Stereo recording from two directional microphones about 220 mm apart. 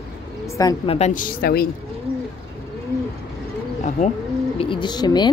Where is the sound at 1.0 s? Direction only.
30° left (ahead or behind).